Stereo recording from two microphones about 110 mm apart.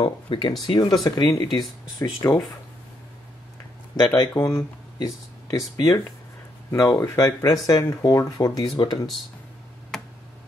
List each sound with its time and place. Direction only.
0.0 s speech: 50° left (ahead or behind)
0.5 s speech: 40° left (ahead or behind)
4.2 s speech: 30° left (ahead or behind)
8.6 s speech: 45° left (ahead or behind)